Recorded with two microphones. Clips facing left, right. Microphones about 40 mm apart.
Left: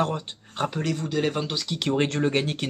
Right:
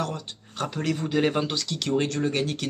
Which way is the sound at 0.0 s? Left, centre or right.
Left.